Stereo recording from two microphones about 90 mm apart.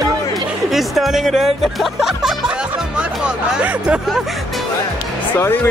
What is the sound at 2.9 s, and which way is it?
Music, 10° right (ahead or behind).